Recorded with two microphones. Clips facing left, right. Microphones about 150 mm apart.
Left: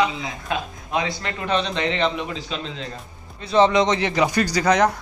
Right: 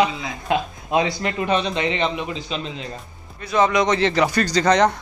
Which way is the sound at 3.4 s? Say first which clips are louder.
Left 2 dB; 30° left (ahead or behind).